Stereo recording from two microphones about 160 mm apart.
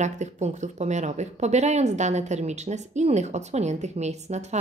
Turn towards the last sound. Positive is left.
turn(degrees=-45)  # may be behind; listen again after turning